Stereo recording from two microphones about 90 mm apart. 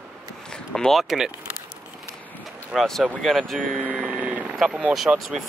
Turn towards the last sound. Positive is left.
turn(degrees=-5)  # may be behind; listen again after turning